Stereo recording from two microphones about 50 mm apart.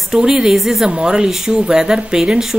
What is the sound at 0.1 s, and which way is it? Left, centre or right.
Speech, centre.